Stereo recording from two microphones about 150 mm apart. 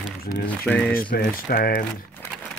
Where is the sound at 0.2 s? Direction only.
85° left.